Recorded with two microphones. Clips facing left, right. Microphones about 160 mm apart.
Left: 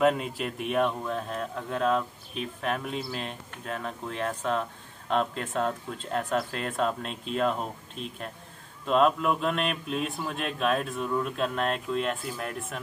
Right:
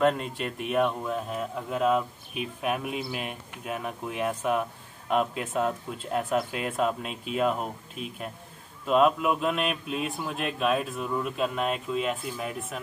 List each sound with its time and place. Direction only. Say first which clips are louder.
0.0 s a man's voice: even; centre (ahead or behind)